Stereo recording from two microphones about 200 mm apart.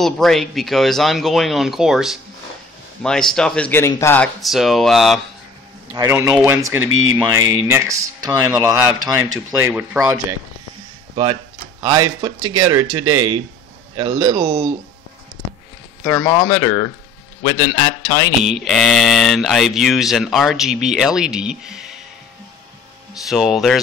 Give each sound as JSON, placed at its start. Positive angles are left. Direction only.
{"t": 0.0, "sound": "speech", "side_deg": 0}
{"t": 5.9, "sound": "speech", "side_deg": -15}
{"t": 6.9, "sound": "speech", "side_deg": -90}
{"t": 7.2, "sound": "speech", "side_deg": -10}
{"t": 11.8, "sound": "speech", "side_deg": -20}
{"t": 16.0, "sound": "speech", "side_deg": 10}
{"t": 17.4, "sound": "speech", "side_deg": 25}
{"t": 18.4, "sound": "speech", "side_deg": 0}
{"t": 23.2, "sound": "speech", "side_deg": 0}